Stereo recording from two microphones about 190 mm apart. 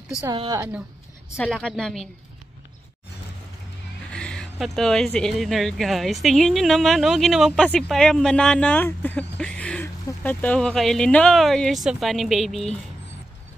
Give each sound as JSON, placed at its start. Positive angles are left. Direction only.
{"t": 0.2, "sound": "a woman's voice", "side_deg": -20}
{"t": 1.3, "sound": "speech", "side_deg": 5}
{"t": 4.1, "sound": "speech", "side_deg": 5}